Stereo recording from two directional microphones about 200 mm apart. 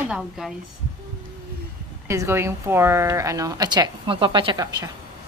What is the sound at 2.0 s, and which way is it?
A woman's voice, 15° right (ahead or behind).